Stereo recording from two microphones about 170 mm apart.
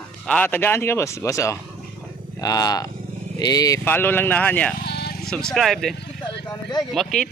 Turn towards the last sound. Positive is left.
turn(degrees=5)  # may be behind; listen again after turning